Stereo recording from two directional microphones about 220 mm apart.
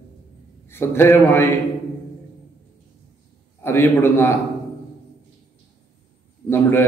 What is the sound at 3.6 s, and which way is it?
Speech, 10° left (ahead or behind).